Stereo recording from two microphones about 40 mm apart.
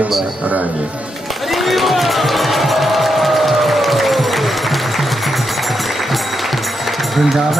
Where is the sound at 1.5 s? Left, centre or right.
Centre.